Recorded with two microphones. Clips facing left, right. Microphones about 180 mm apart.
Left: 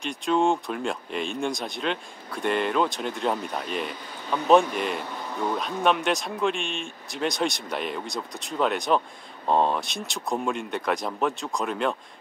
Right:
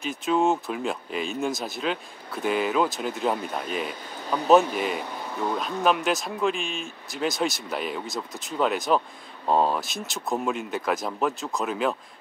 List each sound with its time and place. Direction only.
0.0 s speech: 5° right (ahead or behind)